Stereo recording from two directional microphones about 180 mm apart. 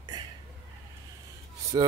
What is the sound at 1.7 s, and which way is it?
Speech, 20° right (ahead or behind).